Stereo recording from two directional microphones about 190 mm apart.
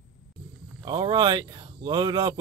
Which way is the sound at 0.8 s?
25° right (ahead or behind).